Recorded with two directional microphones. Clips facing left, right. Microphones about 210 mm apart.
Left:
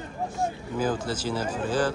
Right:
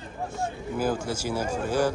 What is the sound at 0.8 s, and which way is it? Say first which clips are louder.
Speech: even; 10° right (ahead or behind).